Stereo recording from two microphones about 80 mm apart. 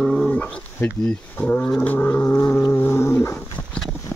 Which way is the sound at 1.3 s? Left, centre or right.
Left.